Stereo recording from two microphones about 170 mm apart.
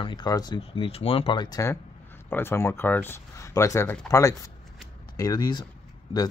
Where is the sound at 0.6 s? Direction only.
35° left (ahead or behind).